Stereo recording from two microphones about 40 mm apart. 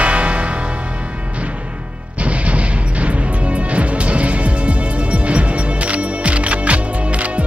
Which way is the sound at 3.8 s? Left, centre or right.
Right.